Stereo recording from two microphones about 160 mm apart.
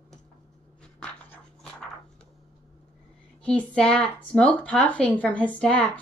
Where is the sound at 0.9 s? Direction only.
5° left (ahead or behind).